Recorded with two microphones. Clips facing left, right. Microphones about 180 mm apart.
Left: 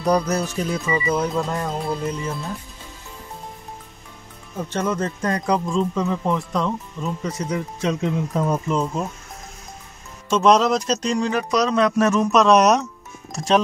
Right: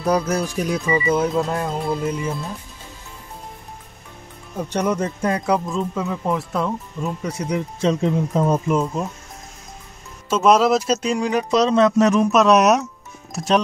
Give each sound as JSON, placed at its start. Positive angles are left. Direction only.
{"t": 0.0, "sound": "speech", "side_deg": -5}
{"t": 4.6, "sound": "speech", "side_deg": -15}
{"t": 7.8, "sound": "speech", "side_deg": -30}
{"t": 8.6, "sound": "speech", "side_deg": -5}
{"t": 10.3, "sound": "speech", "side_deg": -5}
{"t": 11.5, "sound": "speech", "side_deg": -25}
{"t": 12.3, "sound": "speech", "side_deg": -5}